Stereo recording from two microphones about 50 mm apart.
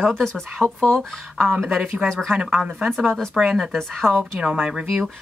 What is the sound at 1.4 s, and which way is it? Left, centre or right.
Speech, centre.